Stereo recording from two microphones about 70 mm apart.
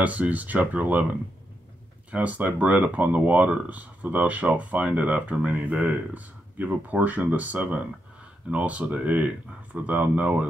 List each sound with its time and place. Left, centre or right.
0.0 s speech: right
2.0 s speech: right